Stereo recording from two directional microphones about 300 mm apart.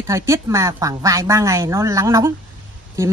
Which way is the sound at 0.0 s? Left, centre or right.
Centre.